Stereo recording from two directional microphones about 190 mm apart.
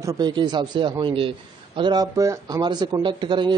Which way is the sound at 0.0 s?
20° right (ahead or behind).